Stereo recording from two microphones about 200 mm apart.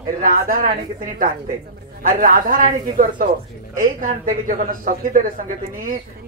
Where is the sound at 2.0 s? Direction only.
45° right (ahead or behind).